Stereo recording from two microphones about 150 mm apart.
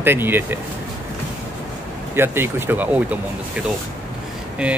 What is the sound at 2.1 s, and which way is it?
Speech, 15° right (ahead or behind).